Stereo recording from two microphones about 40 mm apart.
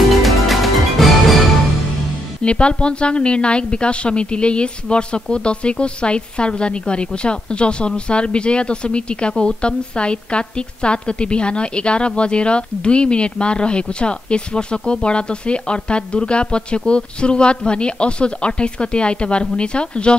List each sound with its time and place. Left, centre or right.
0.1 s music: centre
2.4 s a woman's voice: left